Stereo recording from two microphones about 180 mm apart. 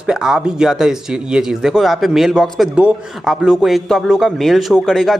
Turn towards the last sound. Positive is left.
turn(degrees=0)  # may be behind; listen again after turning